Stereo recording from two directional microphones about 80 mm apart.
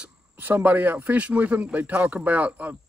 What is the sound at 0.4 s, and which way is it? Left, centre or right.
Speech, right.